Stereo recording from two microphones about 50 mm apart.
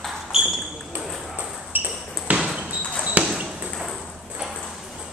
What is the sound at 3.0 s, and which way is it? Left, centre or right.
Basketball bounce, right.